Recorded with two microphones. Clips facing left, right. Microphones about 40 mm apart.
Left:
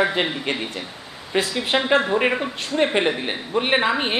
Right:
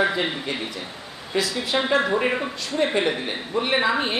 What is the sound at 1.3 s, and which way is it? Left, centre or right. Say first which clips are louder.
Speech: left 2 dB; left.